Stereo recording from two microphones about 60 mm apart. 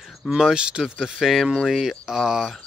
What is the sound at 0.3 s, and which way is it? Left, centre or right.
Speech, centre.